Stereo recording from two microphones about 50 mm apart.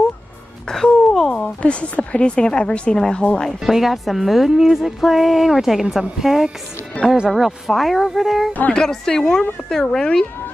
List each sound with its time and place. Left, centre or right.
0.7 s music: centre
1.6 s a woman's voice: left
3.6 s a woman's voice: centre
8.7 s a woman's voice: centre